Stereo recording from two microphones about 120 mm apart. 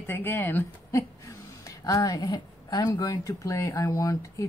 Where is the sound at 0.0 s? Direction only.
20° left (ahead or behind).